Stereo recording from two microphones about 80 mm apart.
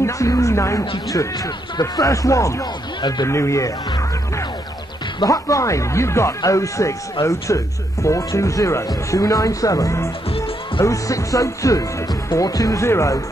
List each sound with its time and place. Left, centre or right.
0.0 s a sound: left
1.1 s speech: left
3.0 s speech: left
3.3 s speech: left